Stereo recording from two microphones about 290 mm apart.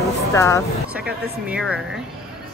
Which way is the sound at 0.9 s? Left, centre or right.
Centre.